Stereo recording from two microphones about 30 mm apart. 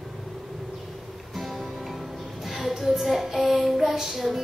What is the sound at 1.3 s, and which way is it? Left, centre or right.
Music, centre.